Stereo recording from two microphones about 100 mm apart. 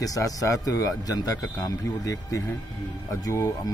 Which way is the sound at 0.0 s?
35° left (ahead or behind).